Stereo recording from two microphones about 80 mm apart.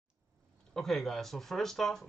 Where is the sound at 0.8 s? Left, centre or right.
Centre.